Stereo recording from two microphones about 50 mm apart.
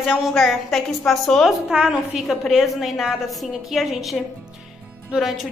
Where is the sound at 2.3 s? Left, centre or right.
Centre.